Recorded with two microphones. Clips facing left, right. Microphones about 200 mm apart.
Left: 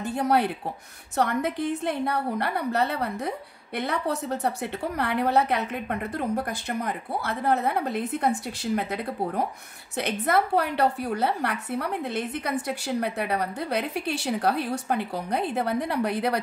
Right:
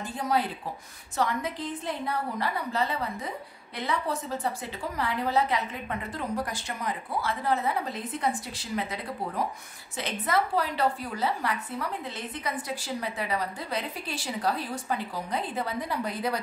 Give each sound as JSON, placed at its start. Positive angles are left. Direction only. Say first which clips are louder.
{"t": 0.0, "sound": "a woman's voice", "louder": "left 5 dB", "side_deg": 65}